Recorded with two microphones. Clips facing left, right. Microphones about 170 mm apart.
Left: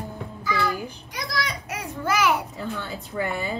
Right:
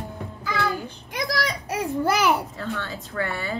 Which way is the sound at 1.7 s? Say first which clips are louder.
Right 6 dB; 35° right (ahead or behind).